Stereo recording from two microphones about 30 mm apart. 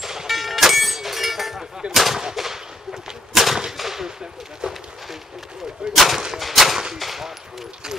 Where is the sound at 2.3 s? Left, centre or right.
Centre.